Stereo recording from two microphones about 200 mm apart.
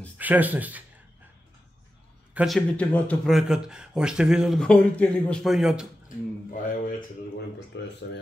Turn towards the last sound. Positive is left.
turn(degrees=60)  # may be behind; listen again after turning